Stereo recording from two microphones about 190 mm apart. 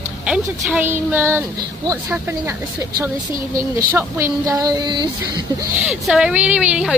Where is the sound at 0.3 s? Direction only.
10° right (ahead or behind).